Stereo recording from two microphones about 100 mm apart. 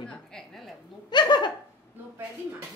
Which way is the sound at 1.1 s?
50° left (ahead or behind).